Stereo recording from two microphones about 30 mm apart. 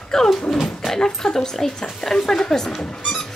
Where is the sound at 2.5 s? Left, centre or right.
Centre.